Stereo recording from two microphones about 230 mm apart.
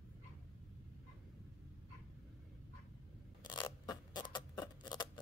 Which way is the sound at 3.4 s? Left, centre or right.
Centre.